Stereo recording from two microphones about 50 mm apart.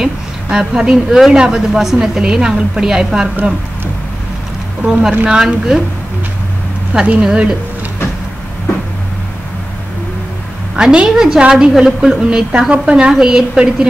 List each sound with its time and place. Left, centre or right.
0.0 s a woman's voice: centre
5.2 s a woman's voice: centre
6.9 s a woman's voice: centre
10.8 s a woman's voice: centre